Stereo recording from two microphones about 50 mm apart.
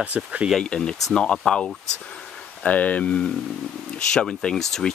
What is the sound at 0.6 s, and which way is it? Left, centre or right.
Speech, centre.